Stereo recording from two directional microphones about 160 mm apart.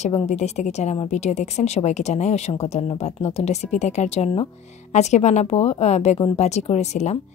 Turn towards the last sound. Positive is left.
turn(degrees=45)  # may be behind; listen again after turning